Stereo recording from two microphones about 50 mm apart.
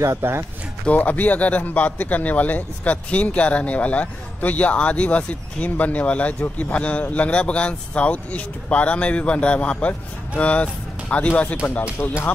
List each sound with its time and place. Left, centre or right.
0.2 s speech: right
0.9 s speech: left
12.0 s speech: left